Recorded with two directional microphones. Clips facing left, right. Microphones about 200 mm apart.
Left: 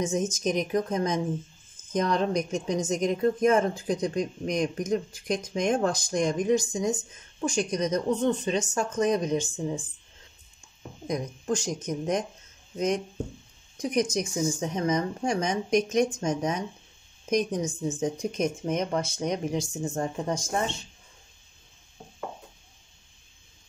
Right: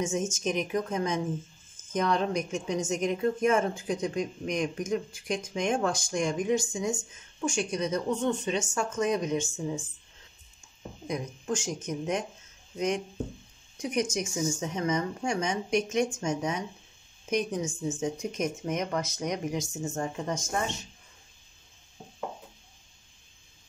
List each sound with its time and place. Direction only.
0.0 s a woman's voice: 35° left (ahead or behind)
11.1 s a woman's voice: 35° left (ahead or behind)